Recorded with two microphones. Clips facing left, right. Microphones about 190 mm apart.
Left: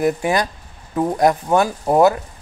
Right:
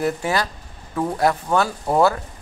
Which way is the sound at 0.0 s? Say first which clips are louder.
Left 4 dB; 15° left (ahead or behind).